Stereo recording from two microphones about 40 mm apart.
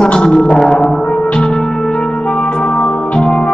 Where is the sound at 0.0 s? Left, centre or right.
Left.